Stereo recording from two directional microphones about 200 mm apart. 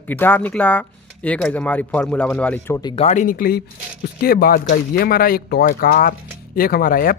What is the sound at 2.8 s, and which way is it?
Speech, 30° left (ahead or behind).